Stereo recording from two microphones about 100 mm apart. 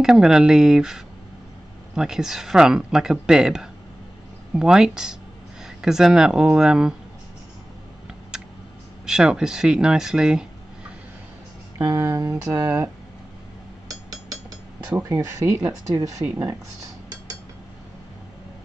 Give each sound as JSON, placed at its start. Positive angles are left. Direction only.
{"t": 0.0, "sound": "speech", "side_deg": -5}
{"t": 9.0, "sound": "speech", "side_deg": -5}
{"t": 11.9, "sound": "speech", "side_deg": -35}
{"t": 12.6, "sound": "speech", "side_deg": -20}
{"t": 13.8, "sound": "chink", "side_deg": -40}
{"t": 15.0, "sound": "speech", "side_deg": -30}